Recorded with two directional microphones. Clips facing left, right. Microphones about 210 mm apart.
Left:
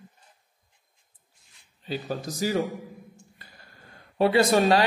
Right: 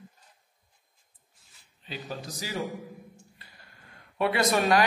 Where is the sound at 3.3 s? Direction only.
35° left (ahead or behind).